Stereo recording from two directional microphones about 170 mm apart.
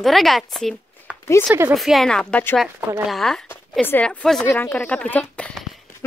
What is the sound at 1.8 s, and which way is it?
A woman's voice, centre (ahead or behind).